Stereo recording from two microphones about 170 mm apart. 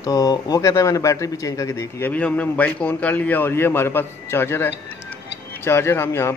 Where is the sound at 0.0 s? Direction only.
20° left (ahead or behind).